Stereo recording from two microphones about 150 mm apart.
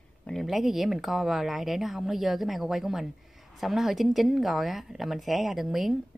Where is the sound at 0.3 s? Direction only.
Centre (ahead or behind).